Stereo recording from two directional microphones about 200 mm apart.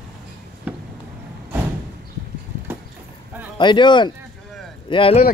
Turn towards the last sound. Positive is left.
turn(degrees=25)  # may be behind; listen again after turning